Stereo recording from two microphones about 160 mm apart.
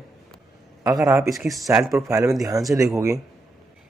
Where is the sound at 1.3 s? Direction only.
Centre (ahead or behind).